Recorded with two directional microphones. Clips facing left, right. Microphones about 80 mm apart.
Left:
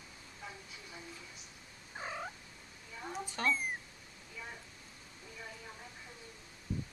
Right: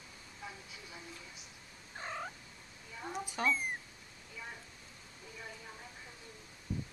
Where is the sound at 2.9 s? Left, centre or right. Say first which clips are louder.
Right 1 dB; centre.